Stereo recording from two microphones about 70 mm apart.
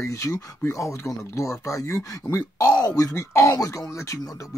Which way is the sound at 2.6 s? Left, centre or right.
Left.